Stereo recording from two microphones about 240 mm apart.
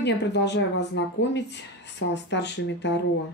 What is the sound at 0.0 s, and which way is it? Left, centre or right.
Speech, left.